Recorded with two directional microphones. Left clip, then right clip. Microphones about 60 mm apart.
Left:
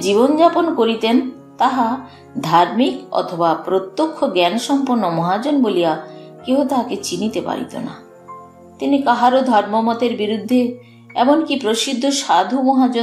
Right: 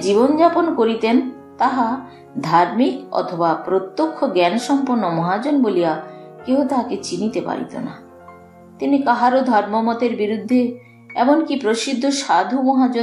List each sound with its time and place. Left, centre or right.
0.0 s a woman's voice: left